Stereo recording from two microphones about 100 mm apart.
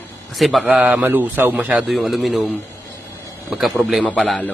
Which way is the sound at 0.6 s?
15° right (ahead or behind).